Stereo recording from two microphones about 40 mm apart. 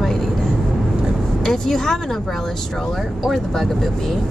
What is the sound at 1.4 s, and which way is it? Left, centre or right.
Speech, centre.